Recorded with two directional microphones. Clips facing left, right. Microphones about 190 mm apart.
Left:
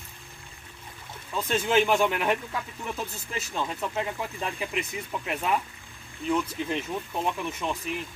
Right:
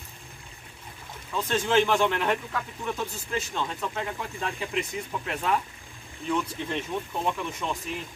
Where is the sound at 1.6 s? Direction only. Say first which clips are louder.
Even; 10° left (ahead or behind).